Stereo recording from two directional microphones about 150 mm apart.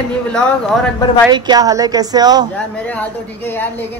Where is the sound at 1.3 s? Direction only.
25° right (ahead or behind).